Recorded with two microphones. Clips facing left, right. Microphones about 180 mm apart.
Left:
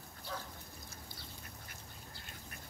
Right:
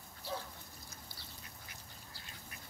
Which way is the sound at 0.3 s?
20° right (ahead or behind).